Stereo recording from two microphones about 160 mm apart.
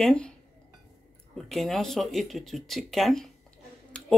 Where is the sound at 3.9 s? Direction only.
5° left (ahead or behind).